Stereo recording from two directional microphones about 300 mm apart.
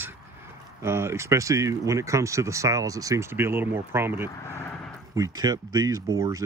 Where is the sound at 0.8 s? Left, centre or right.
Centre.